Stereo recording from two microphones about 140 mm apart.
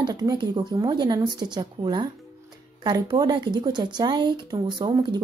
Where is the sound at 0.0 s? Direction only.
30° right (ahead or behind).